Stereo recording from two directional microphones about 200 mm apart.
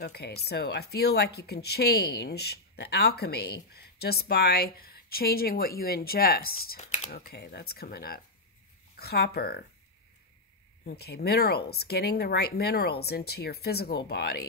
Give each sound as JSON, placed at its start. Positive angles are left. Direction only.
{"t": 0.0, "sound": "speech", "side_deg": 55}
{"t": 10.9, "sound": "speech", "side_deg": 50}